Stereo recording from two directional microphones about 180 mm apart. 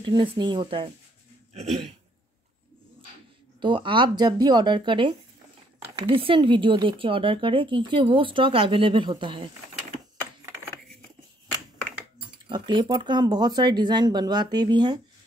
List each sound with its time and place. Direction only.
0.0 s speech: 30° right (ahead or behind)
1.5 s a sound: 40° right (ahead or behind)
3.6 s speech: 25° right (ahead or behind)
12.4 s speech: 25° right (ahead or behind)